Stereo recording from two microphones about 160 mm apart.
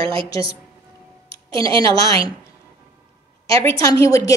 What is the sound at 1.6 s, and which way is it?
Speech, 25° left (ahead or behind).